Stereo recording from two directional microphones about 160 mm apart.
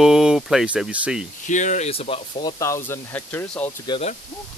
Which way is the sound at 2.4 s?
20° left (ahead or behind).